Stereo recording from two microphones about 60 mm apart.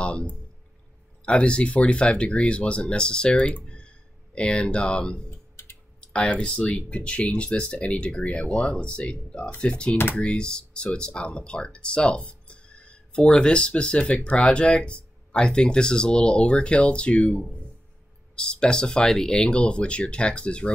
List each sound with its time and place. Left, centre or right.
0.0 s speech: centre